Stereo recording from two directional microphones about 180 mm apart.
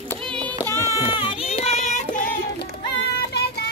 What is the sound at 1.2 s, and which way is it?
Music, 30° left (ahead or behind).